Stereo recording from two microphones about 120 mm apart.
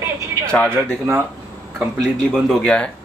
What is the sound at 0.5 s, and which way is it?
Speech, 10° left (ahead or behind).